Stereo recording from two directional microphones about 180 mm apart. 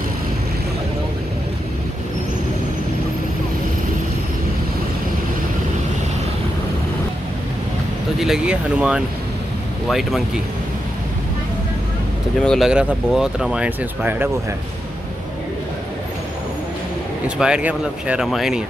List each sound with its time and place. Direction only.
8.2 s speech: 5° right (ahead or behind)
12.4 s speech: centre (ahead or behind)
17.4 s speech: 5° right (ahead or behind)